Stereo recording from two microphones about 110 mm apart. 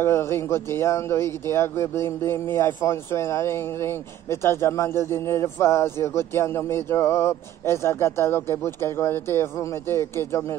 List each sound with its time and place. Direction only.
0.0 s speech: 25° left (ahead or behind)